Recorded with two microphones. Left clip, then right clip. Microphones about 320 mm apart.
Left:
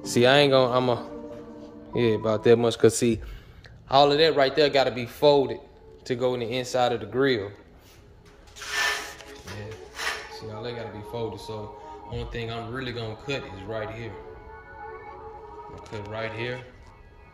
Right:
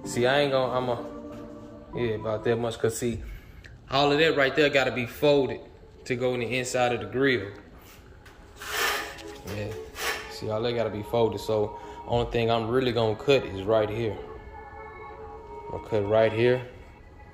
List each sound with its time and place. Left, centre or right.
0.0 s a man's voice: left
3.9 s a man's voice: centre
10.3 s speech: centre
15.9 s speech: centre